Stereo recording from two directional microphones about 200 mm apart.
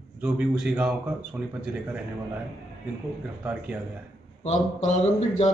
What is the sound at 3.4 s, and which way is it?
Speech, 5° right (ahead or behind).